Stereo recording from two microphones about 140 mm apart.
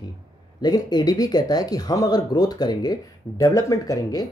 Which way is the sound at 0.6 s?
30° left (ahead or behind).